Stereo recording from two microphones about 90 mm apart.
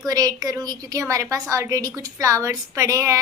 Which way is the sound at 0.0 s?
45° right (ahead or behind).